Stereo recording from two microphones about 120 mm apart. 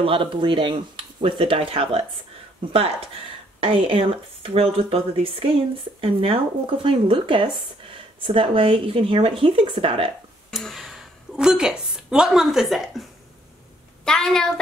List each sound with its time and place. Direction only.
0.0 s speech: 50° right (ahead or behind)
10.5 s a woman's voice: centre (ahead or behind)
14.0 s a woman's voice: 5° left (ahead or behind)